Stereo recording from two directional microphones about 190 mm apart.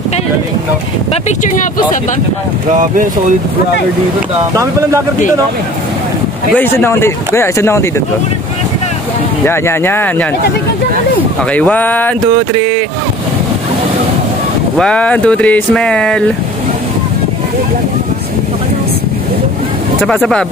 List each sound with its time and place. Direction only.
1.4 s speech: 40° left (ahead or behind)
2.7 s speech: 40° right (ahead or behind)
6.5 s speech: 10° left (ahead or behind)
9.4 s speech: 10° left (ahead or behind)
11.5 s speech: 10° left (ahead or behind)
14.8 s speech: 5° left (ahead or behind)
20.0 s speech: 5° left (ahead or behind)